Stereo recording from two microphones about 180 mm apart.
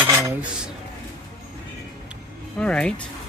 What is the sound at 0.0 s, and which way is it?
Cutlery, 10° right (ahead or behind).